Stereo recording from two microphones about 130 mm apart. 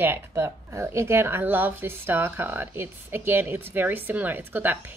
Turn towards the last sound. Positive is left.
turn(degrees=-15)  # may be behind; listen again after turning